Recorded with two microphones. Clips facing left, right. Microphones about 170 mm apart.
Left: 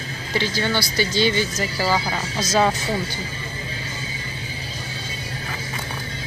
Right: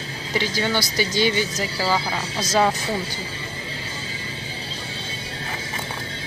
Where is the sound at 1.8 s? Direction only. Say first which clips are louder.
Left 1 dB; 10° left (ahead or behind).